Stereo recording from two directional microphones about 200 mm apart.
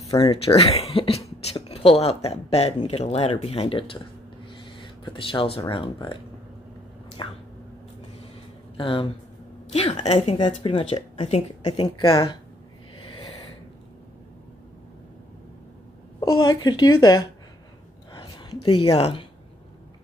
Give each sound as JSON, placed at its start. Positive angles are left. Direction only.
{"t": 0.1, "sound": "speech", "side_deg": 15}
{"t": 0.5, "sound": "speech", "side_deg": 30}
{"t": 7.2, "sound": "speech", "side_deg": 25}
{"t": 8.7, "sound": "speech", "side_deg": 25}
{"t": 16.2, "sound": "speech", "side_deg": 20}
{"t": 18.1, "sound": "a woman's voice", "side_deg": 25}